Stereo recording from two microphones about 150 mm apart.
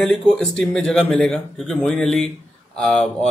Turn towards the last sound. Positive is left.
turn(degrees=5)  # may be behind; listen again after turning